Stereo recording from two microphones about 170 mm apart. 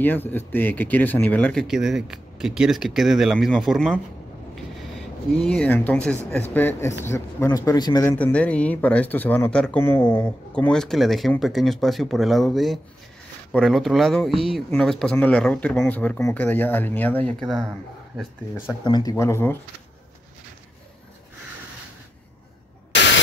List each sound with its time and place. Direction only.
0.0 s speech: 10° left (ahead or behind)
5.4 s a man's voice: 5° left (ahead or behind); by 8.2 s 20° left (ahead or behind)
8.2 s speech: 10° left (ahead or behind)
18.7 s speech: 25° left (ahead or behind)